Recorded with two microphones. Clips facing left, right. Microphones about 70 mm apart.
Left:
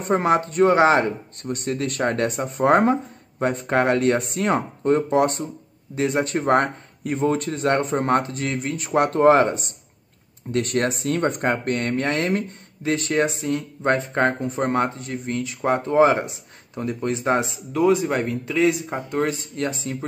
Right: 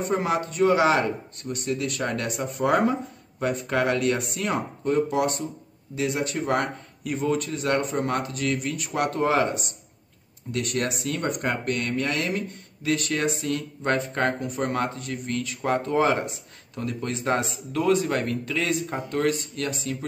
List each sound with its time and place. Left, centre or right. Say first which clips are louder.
0.0 s a man's voice: left 5 dB; left